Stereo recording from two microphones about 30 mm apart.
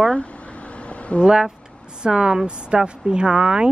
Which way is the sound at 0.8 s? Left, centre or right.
Left.